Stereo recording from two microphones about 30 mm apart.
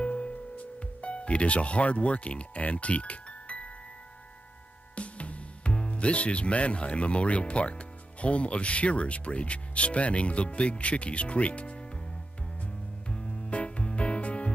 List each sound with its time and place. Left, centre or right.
0.0 s music: left
0.7 s speech: left
4.9 s speech: left
13.1 s music: left